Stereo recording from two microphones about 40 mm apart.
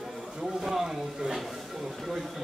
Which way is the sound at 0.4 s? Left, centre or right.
Centre.